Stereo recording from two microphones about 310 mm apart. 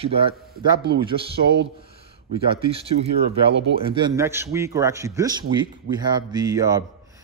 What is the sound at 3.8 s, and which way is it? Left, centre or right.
A man's voice, centre.